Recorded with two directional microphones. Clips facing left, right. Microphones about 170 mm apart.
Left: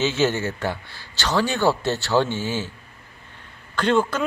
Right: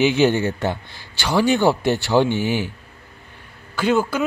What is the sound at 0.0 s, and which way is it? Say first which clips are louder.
Speech: right 5 dB; 15° right (ahead or behind).